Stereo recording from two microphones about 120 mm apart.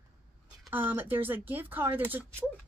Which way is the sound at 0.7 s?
15° right (ahead or behind).